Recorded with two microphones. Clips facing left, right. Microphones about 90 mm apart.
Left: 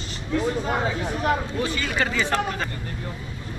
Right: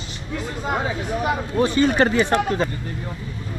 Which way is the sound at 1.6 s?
30° right (ahead or behind).